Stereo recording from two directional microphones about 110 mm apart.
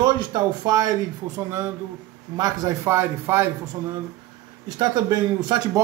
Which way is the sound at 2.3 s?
40° right (ahead or behind).